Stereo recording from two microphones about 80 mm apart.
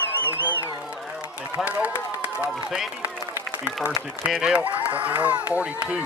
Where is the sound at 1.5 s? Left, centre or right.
Centre.